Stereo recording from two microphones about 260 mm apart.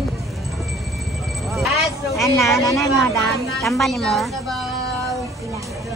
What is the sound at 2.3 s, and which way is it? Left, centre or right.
A woman's voice, centre.